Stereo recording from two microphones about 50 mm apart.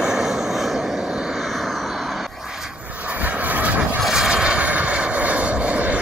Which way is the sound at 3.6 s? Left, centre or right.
Right.